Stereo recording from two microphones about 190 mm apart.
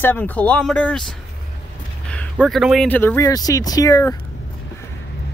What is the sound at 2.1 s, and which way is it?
Speech, 5° left (ahead or behind).